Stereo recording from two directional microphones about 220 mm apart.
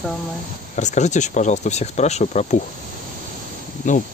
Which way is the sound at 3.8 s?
35° left (ahead or behind).